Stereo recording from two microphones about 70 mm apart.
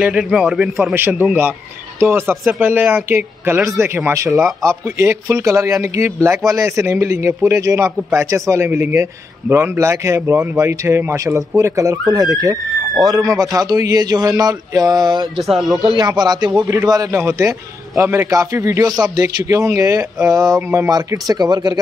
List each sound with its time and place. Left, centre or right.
0.0 s a man's voice: centre
0.9 s speech: right
4.1 s a man's voice: right
14.4 s a sound: right
15.3 s speech: centre
16.0 s speech: right
16.6 s speech: right
17.1 s speech: right
18.9 s a sound: right
19.5 s speech: right
21.3 s a sound: right